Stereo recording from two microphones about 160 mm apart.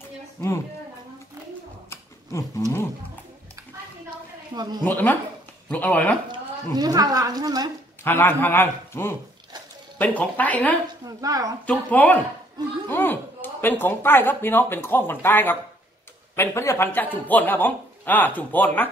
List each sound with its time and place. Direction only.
1.9 s a sound: 20° left (ahead or behind)
4.6 s a woman's voice: 25° right (ahead or behind)
4.8 s speech: 10° left (ahead or behind)
6.7 s a woman's voice: 25° right (ahead or behind)
8.0 s speech: 15° left (ahead or behind)
11.1 s a woman's voice: 20° right (ahead or behind)
11.6 s speech: 10° left (ahead or behind)